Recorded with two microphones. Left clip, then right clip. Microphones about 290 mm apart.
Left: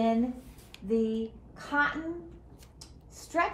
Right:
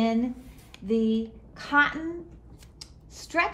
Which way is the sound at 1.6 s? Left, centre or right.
Right.